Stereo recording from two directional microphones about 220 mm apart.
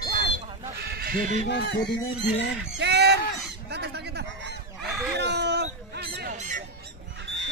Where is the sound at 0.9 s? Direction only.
40° right (ahead or behind).